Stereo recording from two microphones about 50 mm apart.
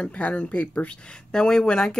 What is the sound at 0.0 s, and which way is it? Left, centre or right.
Speech, left.